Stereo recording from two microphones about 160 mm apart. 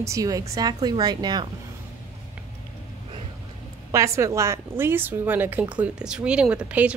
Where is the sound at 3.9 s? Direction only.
15° right (ahead or behind).